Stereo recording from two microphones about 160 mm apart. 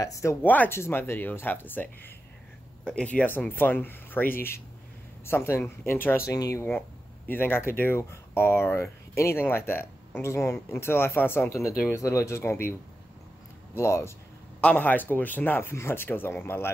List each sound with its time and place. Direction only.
0.0 s speech: 20° left (ahead or behind)
13.7 s speech: 15° left (ahead or behind)